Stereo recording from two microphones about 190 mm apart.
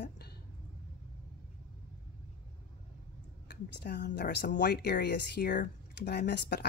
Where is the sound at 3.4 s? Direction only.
60° left (ahead or behind).